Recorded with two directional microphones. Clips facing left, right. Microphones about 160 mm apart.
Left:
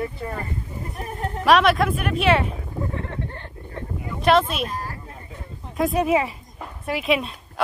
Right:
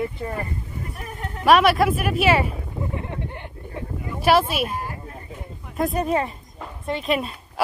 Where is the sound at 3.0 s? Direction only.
15° right (ahead or behind).